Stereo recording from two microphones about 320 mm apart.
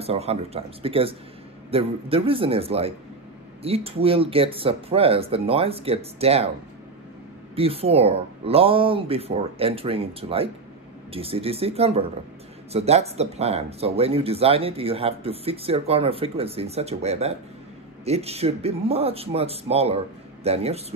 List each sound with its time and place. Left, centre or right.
0.0 s speech: centre
7.5 s speech: centre